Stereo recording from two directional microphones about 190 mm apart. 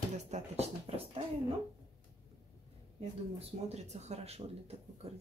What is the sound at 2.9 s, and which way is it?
Speech, 30° right (ahead or behind).